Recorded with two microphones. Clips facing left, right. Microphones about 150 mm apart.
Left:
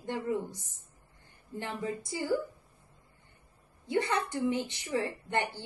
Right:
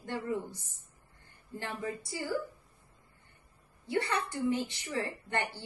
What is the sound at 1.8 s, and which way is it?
Speech, 20° left (ahead or behind).